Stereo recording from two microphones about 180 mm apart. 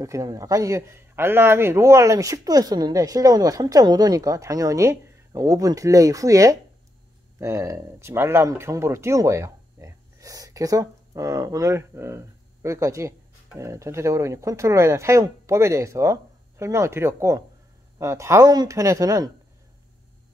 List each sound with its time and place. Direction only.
0.0 s speech: 20° right (ahead or behind)